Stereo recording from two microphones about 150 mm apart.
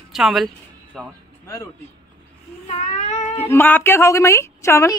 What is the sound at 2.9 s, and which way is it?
Speech, 50° left (ahead or behind).